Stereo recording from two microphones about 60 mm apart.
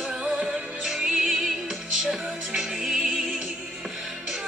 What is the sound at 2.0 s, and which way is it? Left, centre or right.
Music, centre.